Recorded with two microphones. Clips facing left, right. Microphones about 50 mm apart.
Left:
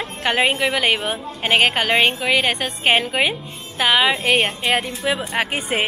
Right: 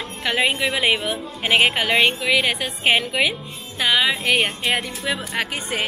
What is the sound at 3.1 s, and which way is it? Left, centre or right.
A woman's voice, centre.